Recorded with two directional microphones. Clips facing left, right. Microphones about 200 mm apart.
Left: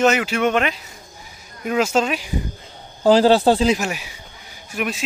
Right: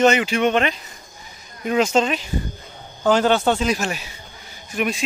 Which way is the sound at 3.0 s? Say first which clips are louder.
Left 4 dB; 30° left (ahead or behind).